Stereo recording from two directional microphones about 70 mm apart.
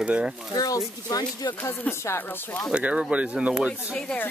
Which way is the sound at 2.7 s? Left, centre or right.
Centre.